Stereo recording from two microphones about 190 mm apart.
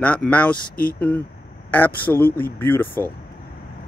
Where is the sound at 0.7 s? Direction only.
50° left (ahead or behind).